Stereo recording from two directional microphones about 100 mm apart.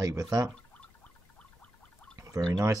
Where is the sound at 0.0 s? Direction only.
35° right (ahead or behind).